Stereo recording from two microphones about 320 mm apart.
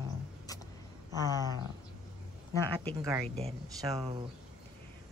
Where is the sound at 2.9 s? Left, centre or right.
Centre.